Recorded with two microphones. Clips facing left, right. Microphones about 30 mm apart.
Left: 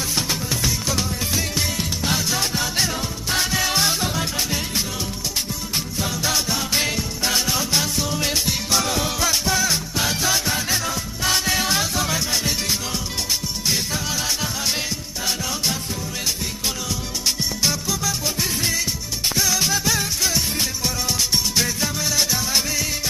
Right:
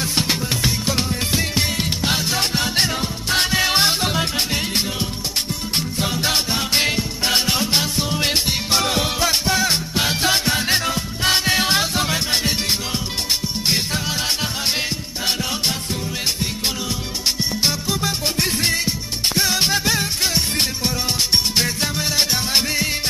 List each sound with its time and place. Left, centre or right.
0.1 s music: right
3.7 s music: right
5.9 s music: right
10.3 s music: right
10.9 s music: right
17.6 s music: right
18.2 s music: right
21.5 s music: right